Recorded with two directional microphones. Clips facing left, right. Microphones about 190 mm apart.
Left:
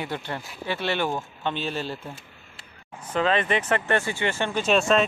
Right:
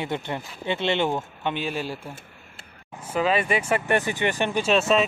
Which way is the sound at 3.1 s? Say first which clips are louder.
Even; 10° right (ahead or behind).